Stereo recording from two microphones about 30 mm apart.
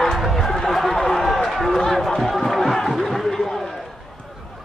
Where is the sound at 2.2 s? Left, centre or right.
Centre.